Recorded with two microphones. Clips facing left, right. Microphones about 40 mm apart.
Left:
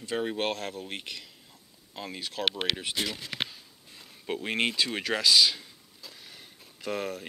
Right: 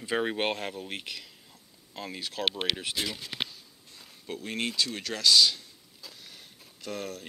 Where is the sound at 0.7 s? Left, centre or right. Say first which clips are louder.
Even; centre.